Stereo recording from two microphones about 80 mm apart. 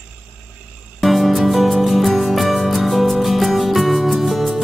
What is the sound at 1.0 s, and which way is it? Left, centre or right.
Music, centre.